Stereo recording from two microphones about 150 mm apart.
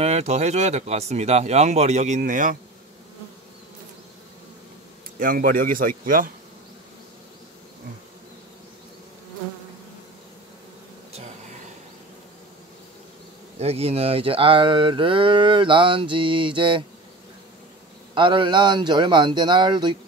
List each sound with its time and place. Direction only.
0.0 s speech: 45° right (ahead or behind)
5.2 s speech: 70° right (ahead or behind)
13.6 s speech: 45° right (ahead or behind)
18.1 s speech: 35° right (ahead or behind)